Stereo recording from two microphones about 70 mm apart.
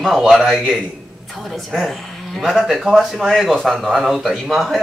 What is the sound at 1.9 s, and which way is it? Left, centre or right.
Speech, centre.